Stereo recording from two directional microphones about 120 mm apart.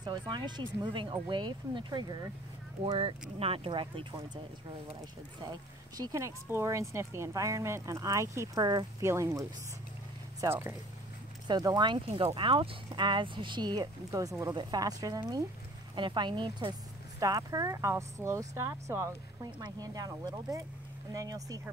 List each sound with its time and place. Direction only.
0.0 s speech: 40° right (ahead or behind)
3.0 s speech: 50° right (ahead or behind)
5.4 s speech: 35° right (ahead or behind)
14.5 s speech: 35° right (ahead or behind)
15.9 s speech: 40° right (ahead or behind)
17.2 s speech: 30° right (ahead or behind)